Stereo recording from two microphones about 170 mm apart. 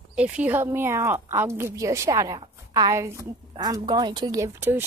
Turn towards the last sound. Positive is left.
turn(degrees=-15)  # may be behind; listen again after turning